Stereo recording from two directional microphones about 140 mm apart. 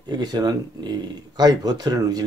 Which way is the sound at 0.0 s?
30° right (ahead or behind).